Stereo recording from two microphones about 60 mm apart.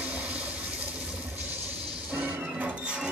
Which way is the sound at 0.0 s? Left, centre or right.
Right.